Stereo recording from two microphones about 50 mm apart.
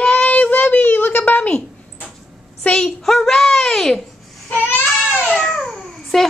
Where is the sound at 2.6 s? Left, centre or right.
Left.